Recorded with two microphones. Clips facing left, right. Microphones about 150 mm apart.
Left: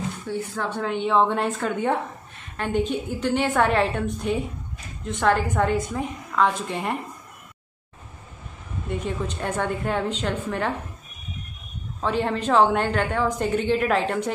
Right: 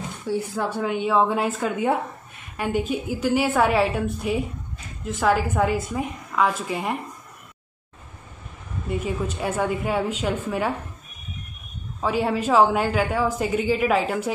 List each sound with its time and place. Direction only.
0.3 s a woman's voice: 10° right (ahead or behind)
8.8 s a woman's voice: 5° right (ahead or behind)
12.0 s a woman's voice: 5° right (ahead or behind)